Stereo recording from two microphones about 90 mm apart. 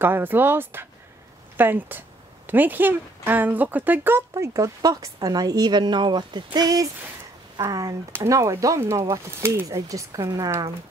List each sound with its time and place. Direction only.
0.0 s speech: 25° right (ahead or behind)
4.3 s speech: 35° right (ahead or behind)